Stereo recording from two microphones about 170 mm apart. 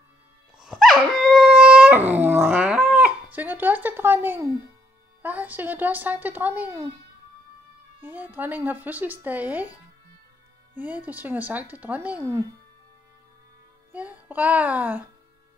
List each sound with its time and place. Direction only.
0.6 s dog: centre (ahead or behind)
5.2 s speech: 10° right (ahead or behind)
8.0 s speech: 10° right (ahead or behind)
10.7 s speech: 10° right (ahead or behind)
13.9 s speech: 10° right (ahead or behind)